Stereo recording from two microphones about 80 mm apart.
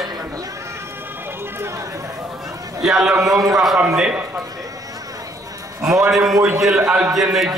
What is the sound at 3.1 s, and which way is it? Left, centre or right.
Speech, right.